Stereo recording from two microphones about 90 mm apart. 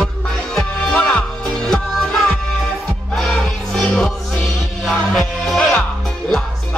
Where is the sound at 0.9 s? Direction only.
15° left (ahead or behind).